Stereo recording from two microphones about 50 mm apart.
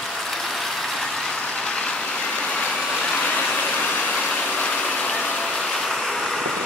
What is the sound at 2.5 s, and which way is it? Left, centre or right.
Vehicle, centre.